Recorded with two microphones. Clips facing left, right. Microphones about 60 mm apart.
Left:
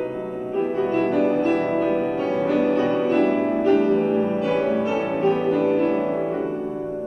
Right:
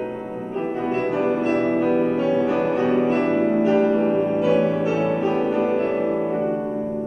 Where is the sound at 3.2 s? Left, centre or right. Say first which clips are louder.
Right 1 dB; right.